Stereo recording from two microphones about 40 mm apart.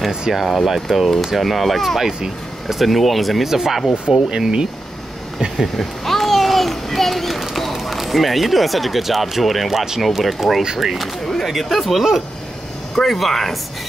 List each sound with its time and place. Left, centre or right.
0.3 s speech: centre
4.3 s speech: right
5.6 s a sound: centre
10.8 s speech: centre